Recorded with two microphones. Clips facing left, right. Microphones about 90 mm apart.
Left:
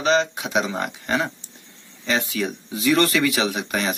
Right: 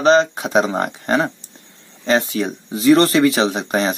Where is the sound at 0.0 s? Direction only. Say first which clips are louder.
Right 6 dB; 40° right (ahead or behind).